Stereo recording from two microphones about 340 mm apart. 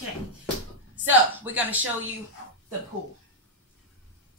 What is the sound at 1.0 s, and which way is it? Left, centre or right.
Speech, centre.